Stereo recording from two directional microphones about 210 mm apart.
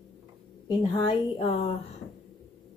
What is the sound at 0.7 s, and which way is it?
A woman's voice, 20° left (ahead or behind).